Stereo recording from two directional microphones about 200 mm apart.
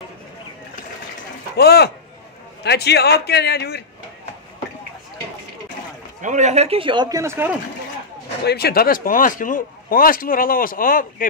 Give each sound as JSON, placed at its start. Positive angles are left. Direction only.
{"t": 1.6, "sound": "a man's voice", "side_deg": 55}
{"t": 6.2, "sound": "speech", "side_deg": -35}
{"t": 8.5, "sound": "speech", "side_deg": 50}